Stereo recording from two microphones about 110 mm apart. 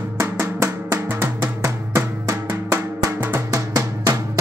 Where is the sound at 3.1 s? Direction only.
15° right (ahead or behind).